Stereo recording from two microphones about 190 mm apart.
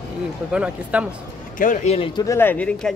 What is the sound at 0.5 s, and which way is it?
Speech, 5° right (ahead or behind).